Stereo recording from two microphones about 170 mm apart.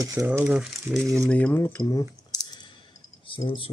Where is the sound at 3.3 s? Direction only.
30° left (ahead or behind).